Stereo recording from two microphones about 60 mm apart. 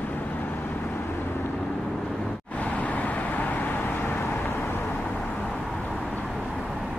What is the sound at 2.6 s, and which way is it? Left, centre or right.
Vehicle, left.